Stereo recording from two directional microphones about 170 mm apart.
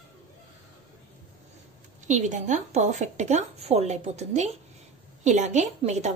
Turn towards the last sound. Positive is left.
turn(degrees=-40)  # may be behind; listen again after turning